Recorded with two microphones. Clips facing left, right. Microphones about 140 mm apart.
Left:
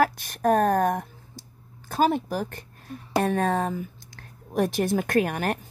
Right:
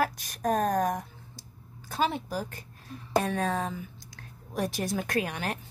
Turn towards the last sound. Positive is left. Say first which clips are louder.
# left 7 dB
turn(degrees=55)  # may be behind; listen again after turning